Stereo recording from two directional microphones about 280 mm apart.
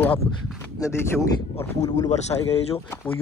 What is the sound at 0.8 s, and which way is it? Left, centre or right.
Speech, centre.